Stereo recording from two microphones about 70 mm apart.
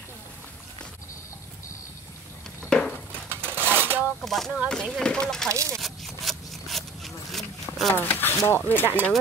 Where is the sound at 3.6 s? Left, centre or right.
Right.